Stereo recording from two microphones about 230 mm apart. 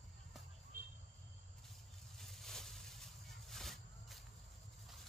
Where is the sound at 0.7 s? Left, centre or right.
Right.